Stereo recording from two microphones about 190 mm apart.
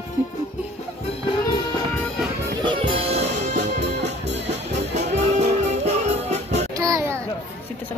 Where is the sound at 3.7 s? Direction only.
65° right (ahead or behind).